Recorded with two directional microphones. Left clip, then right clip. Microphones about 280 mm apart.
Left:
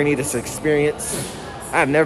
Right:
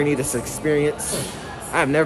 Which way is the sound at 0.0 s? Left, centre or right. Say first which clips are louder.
Left 2 dB; centre.